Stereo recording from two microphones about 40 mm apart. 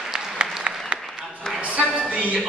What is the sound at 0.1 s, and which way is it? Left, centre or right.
Applause, right.